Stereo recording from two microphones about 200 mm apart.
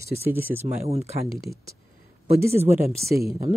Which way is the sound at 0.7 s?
30° right (ahead or behind).